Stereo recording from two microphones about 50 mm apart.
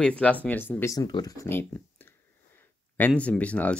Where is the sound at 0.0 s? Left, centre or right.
Left.